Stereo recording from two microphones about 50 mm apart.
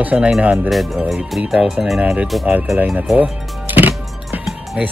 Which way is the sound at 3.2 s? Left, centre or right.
Right.